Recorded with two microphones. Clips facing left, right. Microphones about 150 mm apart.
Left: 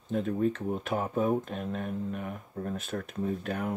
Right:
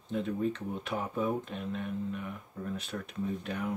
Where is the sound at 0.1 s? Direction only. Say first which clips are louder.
Left 3 dB; 45° left (ahead or behind).